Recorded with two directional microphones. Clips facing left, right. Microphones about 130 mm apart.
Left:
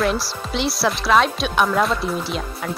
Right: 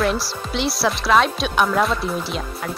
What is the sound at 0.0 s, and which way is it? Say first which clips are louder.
Speech: even; centre (ahead or behind).